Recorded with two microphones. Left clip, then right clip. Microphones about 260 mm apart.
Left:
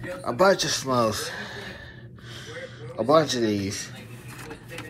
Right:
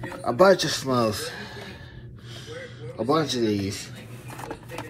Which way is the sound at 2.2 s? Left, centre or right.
Centre.